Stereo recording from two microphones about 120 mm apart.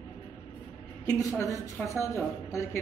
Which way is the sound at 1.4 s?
25° left (ahead or behind).